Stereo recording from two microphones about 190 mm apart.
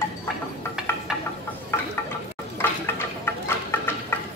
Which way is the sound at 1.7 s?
10° left (ahead or behind).